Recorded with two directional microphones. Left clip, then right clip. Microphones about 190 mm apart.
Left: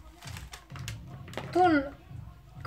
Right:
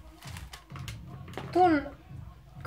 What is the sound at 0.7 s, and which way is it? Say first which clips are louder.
Music: left 1 dB; 25° left (ahead or behind).